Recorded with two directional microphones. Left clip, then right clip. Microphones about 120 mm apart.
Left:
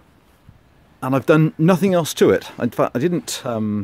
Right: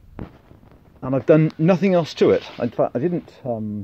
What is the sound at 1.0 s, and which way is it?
Speech, 55° left (ahead or behind).